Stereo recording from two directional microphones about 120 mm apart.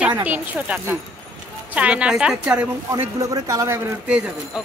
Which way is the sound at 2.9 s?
30° right (ahead or behind).